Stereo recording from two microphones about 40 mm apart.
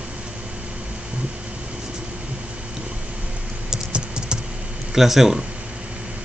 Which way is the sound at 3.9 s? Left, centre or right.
Right.